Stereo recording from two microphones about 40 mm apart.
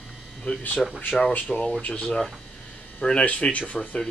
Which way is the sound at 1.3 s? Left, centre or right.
Left.